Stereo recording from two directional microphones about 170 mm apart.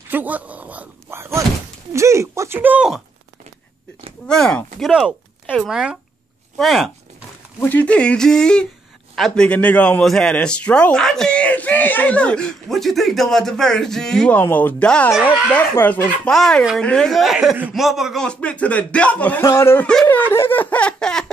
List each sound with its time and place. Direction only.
0.1 s speech: 10° right (ahead or behind)
4.3 s a man's voice: 5° left (ahead or behind)